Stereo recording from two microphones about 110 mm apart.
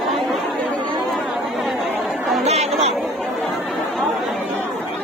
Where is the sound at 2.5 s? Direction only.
75° right (ahead or behind).